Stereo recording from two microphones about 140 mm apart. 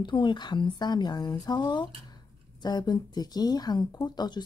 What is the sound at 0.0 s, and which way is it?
Speech, 35° left (ahead or behind).